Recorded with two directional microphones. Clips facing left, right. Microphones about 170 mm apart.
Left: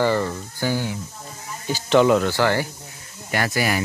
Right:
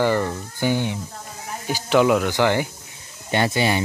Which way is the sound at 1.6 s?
10° right (ahead or behind).